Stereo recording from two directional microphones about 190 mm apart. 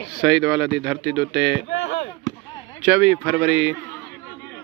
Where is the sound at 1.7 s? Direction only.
70° left (ahead or behind).